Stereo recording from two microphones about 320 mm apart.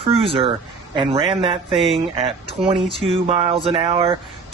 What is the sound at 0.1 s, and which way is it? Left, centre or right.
Speech, centre.